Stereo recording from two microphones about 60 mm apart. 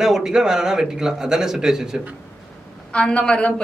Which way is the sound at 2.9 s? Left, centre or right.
Centre.